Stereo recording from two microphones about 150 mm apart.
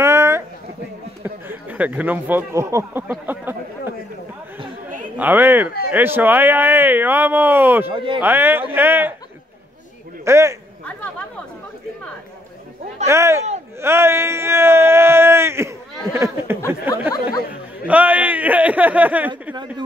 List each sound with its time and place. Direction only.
0.0 s a sound: 15° right (ahead or behind)
1.2 s speech: 10° right (ahead or behind)
5.1 s speech: 10° right (ahead or behind)
7.9 s speech: 35° right (ahead or behind)
8.2 s speech: 15° right (ahead or behind)
10.2 s a man's voice: 20° right (ahead or behind)
13.0 s speech: 20° right (ahead or behind)